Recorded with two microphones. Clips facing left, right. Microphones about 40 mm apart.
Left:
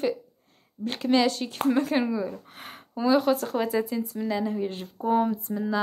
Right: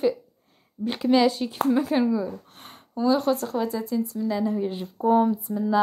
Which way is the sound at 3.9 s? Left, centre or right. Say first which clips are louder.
Right 3 dB; left.